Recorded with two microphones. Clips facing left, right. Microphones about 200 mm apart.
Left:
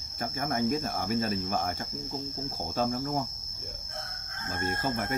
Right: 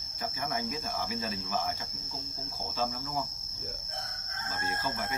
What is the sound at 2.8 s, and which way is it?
Cricket, 50° left (ahead or behind).